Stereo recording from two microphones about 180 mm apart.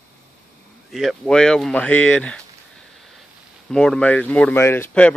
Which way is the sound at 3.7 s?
5° left (ahead or behind).